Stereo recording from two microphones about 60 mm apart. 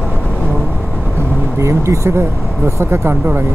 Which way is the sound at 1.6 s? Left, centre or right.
Right.